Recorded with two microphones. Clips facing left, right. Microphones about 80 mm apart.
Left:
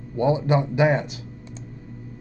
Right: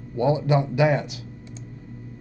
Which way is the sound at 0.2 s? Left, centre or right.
Left.